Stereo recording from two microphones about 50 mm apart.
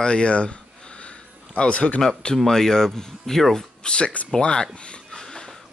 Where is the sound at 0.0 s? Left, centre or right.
Left.